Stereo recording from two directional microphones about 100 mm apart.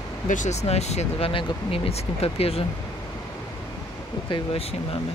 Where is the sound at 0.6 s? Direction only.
90° left.